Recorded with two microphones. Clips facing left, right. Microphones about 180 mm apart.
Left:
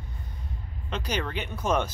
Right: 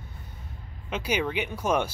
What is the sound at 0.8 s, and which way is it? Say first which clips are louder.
Speech: right 3 dB; 10° right (ahead or behind).